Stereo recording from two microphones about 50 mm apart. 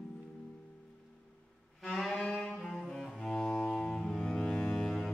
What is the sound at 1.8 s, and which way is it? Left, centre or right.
Music, centre.